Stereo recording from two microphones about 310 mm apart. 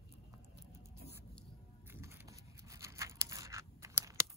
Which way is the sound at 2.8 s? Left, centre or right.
Centre.